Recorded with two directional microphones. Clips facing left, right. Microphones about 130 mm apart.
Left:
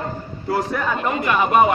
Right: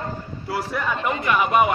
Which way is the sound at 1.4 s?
35° left (ahead or behind).